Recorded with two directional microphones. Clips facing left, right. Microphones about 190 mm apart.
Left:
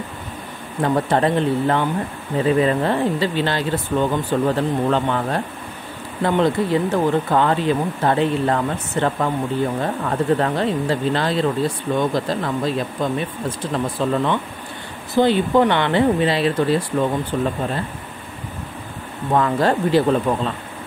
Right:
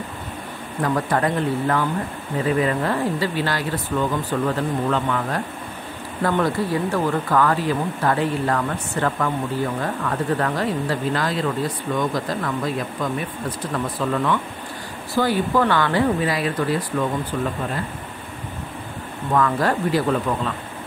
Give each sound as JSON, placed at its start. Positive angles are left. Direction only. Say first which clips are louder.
{"t": 0.8, "sound": "speech", "louder": "left 3 dB", "side_deg": 25}
{"t": 19.3, "sound": "speech", "louder": "left 2 dB", "side_deg": 25}